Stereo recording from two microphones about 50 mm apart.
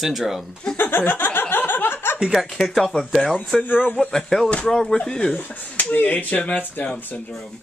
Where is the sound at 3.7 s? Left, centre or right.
Left.